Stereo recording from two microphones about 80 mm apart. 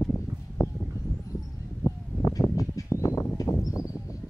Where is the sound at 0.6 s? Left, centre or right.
Left.